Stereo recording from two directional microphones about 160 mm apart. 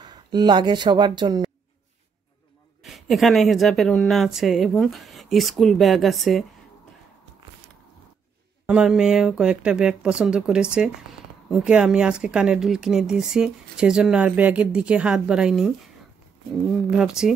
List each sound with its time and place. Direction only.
0.0 s speech: 25° right (ahead or behind)
2.8 s speech: centre (ahead or behind)
8.6 s speech: 5° right (ahead or behind)
16.9 s speech: 5° right (ahead or behind)